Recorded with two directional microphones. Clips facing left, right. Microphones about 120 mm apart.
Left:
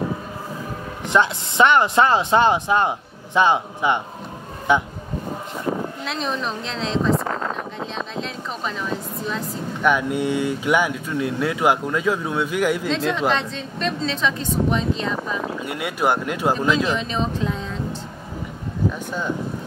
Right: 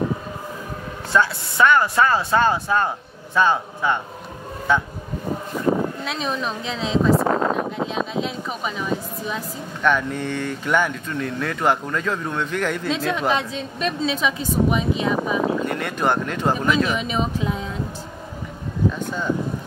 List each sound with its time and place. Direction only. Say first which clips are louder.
1.1 s speech: left 2 dB; 20° left (ahead or behind)
5.7 s a sound: right 5 dB; 45° right (ahead or behind)
6.0 s speech: even; centre (ahead or behind)
7.2 s a sound: right 6 dB; 35° right (ahead or behind)
7.8 s speech: right 4 dB; 5° right (ahead or behind)
9.8 s speech: left 1 dB; 10° left (ahead or behind)
12.8 s a woman's voice: left 1 dB; 5° right (ahead or behind)
15.6 s speech: even; 10° left (ahead or behind)
16.5 s a woman's voice: even; 10° right (ahead or behind)